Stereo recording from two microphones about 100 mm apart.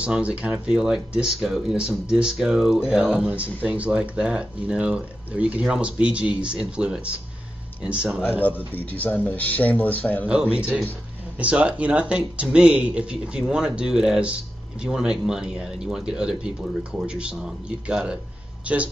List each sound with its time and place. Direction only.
0.0 s speech: 10° right (ahead or behind)
8.3 s speech: 20° left (ahead or behind)
10.2 s speech: 10° right (ahead or behind)